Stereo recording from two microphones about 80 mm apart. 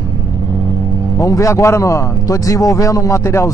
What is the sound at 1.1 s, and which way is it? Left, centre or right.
Speech, left.